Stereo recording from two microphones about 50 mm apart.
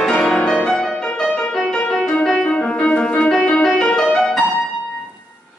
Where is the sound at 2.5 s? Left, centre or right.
Left.